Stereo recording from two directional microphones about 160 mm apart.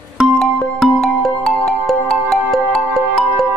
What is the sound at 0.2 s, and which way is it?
Music, centre (ahead or behind).